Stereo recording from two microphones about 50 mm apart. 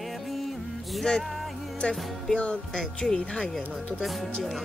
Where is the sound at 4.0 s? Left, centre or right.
Centre.